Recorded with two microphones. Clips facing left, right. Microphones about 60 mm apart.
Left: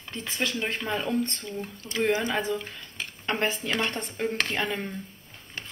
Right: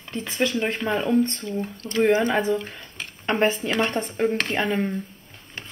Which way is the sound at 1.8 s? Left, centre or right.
Centre.